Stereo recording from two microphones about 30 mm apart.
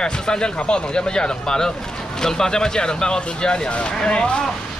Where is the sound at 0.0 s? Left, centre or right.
Left.